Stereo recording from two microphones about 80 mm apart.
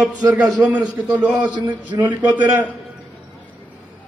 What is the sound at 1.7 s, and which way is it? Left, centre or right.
Speech, right.